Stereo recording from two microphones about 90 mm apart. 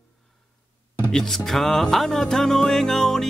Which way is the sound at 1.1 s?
5° left (ahead or behind).